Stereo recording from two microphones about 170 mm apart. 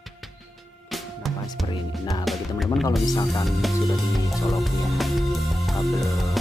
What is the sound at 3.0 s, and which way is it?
Speech, 20° left (ahead or behind).